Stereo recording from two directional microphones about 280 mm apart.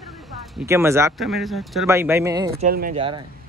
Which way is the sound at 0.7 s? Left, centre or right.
Centre.